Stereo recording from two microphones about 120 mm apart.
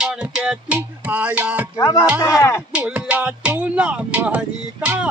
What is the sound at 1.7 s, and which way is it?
Speech, 30° left (ahead or behind).